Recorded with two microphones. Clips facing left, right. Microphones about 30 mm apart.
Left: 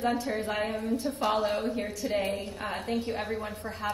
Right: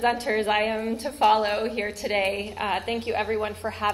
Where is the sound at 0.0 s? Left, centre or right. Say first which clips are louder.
Right 6 dB; right.